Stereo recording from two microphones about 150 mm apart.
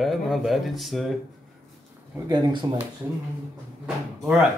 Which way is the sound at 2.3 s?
30° right (ahead or behind).